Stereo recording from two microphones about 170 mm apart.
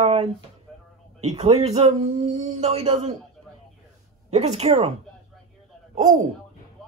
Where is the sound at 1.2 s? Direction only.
40° right (ahead or behind).